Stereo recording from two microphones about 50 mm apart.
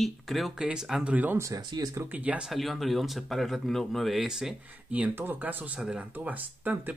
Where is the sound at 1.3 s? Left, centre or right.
Right.